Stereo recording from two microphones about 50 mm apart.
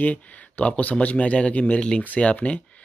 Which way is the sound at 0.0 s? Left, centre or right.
Left.